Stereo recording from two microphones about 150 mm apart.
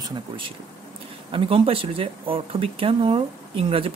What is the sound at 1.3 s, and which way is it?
Speech, 40° right (ahead or behind).